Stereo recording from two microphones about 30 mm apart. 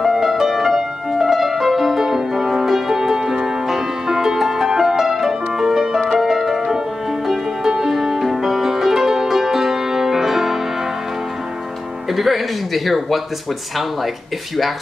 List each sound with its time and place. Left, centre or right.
0.0 s music: centre
7.8 s music: centre
12.1 s speech: centre